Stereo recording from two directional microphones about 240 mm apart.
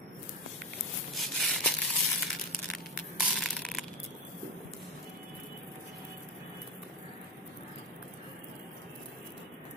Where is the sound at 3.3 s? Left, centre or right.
Centre.